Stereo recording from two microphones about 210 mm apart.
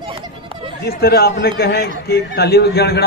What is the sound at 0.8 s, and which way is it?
A man's voice, 50° left (ahead or behind).